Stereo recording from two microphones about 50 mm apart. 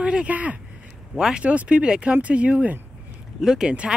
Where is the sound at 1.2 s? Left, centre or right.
Centre.